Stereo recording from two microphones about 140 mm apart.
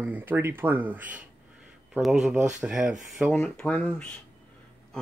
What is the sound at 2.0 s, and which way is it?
Speech, centre (ahead or behind).